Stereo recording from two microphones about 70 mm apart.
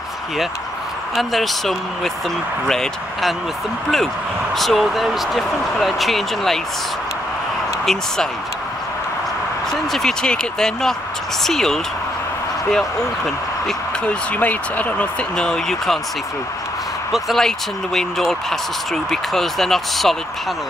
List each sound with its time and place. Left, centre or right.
1.1 s speech: centre
4.6 s speech: centre
7.8 s speech: centre
9.7 s speech: centre
14.3 s speech: left
15.3 s speech: centre
17.1 s speech: centre